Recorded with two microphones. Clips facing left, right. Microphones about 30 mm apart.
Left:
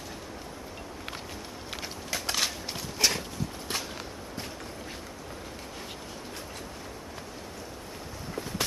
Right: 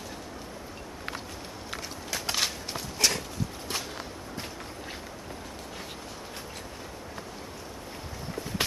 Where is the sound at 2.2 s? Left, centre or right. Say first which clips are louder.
Right 1 dB; centre.